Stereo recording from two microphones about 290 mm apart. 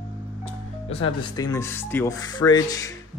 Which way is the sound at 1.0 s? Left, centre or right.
Centre.